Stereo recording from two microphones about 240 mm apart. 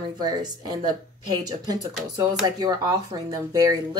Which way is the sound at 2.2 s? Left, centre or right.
Centre.